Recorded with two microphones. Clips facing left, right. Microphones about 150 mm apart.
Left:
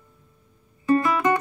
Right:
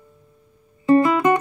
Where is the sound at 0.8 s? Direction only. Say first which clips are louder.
Right 5 dB; 25° right (ahead or behind).